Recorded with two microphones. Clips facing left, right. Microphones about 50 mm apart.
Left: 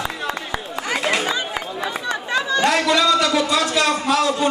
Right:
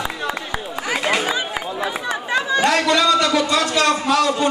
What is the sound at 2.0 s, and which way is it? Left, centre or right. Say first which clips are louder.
Chatter: even; centre.